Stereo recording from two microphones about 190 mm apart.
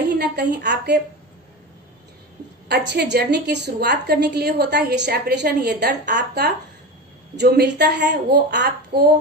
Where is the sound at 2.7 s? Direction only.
60° right (ahead or behind).